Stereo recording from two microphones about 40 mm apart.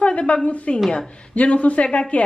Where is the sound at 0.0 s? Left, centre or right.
Left.